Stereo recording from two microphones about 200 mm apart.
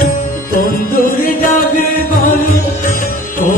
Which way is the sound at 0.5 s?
45° left (ahead or behind).